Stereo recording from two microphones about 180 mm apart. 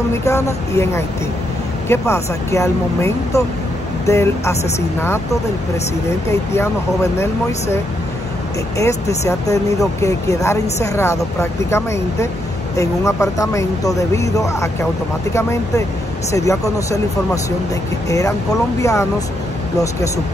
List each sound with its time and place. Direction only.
0.2 s speech: 15° left (ahead or behind)
6.5 s speech: 15° left (ahead or behind)
8.7 s speech: 15° left (ahead or behind)
18.0 s speech: 20° left (ahead or behind)